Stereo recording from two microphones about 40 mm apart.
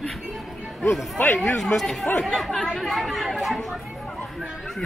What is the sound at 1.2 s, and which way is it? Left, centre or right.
Speech, left.